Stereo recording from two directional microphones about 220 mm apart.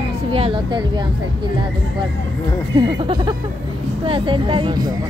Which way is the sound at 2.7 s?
20° right (ahead or behind).